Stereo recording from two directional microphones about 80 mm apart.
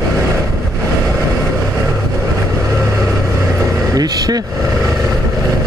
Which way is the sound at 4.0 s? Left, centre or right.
Right.